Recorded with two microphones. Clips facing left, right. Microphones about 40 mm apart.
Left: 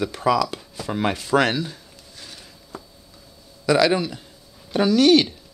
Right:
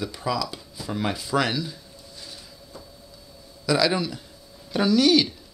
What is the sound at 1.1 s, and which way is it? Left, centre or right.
Speech, left.